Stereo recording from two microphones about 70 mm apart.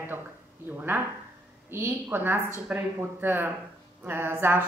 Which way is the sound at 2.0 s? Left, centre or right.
Right.